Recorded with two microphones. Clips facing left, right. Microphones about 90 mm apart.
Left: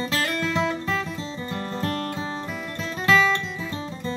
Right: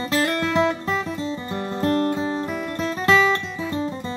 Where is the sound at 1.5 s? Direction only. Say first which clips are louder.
Right 6 dB; 25° right (ahead or behind).